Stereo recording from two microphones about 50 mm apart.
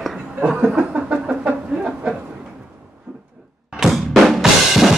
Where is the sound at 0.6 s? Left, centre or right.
Right.